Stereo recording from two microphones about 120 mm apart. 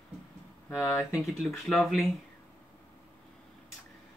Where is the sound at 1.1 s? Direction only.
Centre (ahead or behind).